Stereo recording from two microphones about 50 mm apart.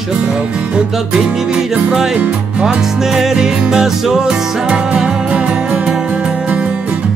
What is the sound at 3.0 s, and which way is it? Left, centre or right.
Music, centre.